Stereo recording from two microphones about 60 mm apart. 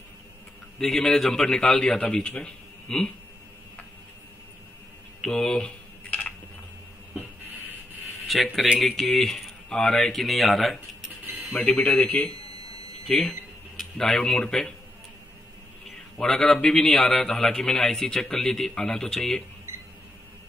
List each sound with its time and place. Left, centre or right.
0.7 s a man's voice: centre
5.2 s typing: centre
8.3 s speech: centre
11.5 s speech: left
13.3 s speech: centre
16.2 s a man's voice: centre